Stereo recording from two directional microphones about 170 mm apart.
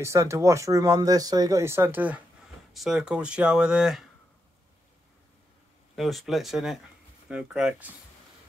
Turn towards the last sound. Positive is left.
turn(degrees=-5)  # may be behind; listen again after turning